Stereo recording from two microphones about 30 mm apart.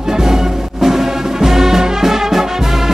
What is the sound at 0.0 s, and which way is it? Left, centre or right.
Music, right.